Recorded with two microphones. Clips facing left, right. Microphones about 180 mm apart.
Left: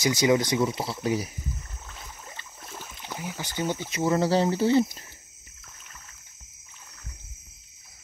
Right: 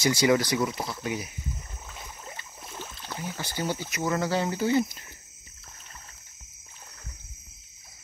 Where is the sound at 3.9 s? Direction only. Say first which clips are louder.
Left 6 dB; 30° left (ahead or behind).